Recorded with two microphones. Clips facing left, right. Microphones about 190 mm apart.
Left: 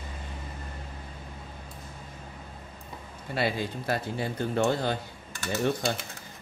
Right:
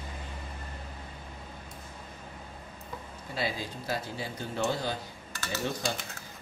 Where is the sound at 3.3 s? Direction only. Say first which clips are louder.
Left 5 dB; 60° left (ahead or behind).